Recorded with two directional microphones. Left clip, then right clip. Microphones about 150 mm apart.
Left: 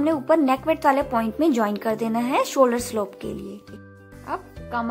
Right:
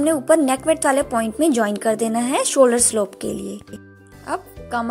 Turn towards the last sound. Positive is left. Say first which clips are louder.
# right 4 dB
turn(degrees=-20)  # may be behind; listen again after turning